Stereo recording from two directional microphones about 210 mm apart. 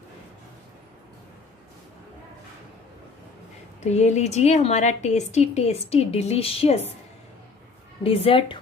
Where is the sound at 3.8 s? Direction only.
30° left (ahead or behind).